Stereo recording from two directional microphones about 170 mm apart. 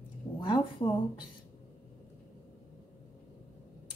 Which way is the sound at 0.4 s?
25° left (ahead or behind).